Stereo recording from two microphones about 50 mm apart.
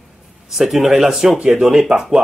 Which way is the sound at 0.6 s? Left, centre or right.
Centre.